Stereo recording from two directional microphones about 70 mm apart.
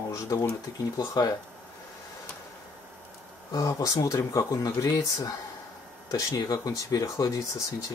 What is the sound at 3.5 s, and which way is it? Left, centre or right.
Speech, left.